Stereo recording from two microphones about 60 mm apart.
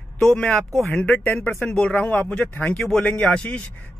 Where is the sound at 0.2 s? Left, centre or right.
Centre.